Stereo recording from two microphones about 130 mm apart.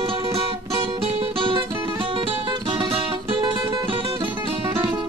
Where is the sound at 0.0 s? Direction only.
45° right (ahead or behind).